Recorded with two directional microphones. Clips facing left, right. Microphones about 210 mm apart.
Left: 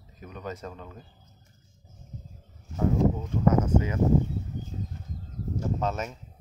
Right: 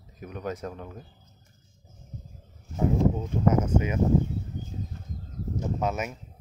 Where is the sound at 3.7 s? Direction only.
20° right (ahead or behind).